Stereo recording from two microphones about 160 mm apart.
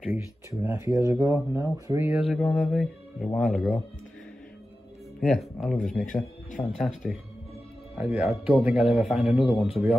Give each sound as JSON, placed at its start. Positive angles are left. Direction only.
{"t": 0.1, "sound": "speech", "side_deg": -15}
{"t": 2.2, "sound": "mantra", "side_deg": 5}
{"t": 2.6, "sound": "music", "side_deg": 0}
{"t": 3.3, "sound": "a man's voice", "side_deg": 5}
{"t": 5.2, "sound": "a man's voice", "side_deg": 5}